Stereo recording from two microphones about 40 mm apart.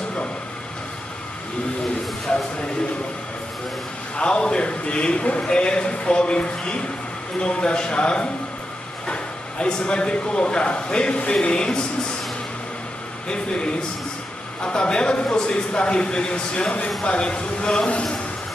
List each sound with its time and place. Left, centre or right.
4.2 s a man's voice: left
13.3 s a man's voice: left